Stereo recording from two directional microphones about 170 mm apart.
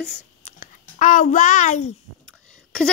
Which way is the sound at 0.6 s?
50° left (ahead or behind).